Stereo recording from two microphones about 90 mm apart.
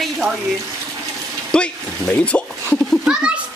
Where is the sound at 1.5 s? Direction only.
10° left (ahead or behind).